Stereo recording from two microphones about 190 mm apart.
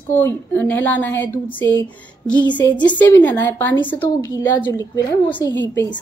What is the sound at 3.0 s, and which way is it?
Speech, 10° left (ahead or behind).